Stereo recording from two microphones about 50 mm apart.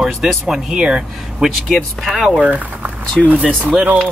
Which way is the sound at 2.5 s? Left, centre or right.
Right.